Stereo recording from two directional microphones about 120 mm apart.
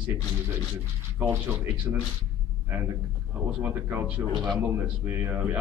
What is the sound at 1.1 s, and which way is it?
Speech, 15° right (ahead or behind).